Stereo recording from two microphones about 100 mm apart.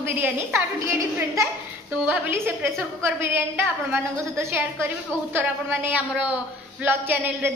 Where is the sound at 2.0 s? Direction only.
20° right (ahead or behind).